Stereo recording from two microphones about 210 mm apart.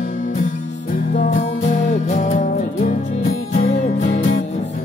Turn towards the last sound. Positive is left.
turn(degrees=35)  # may be behind; listen again after turning